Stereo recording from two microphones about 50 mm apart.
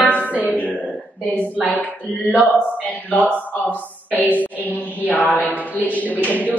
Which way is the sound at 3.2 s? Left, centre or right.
Left.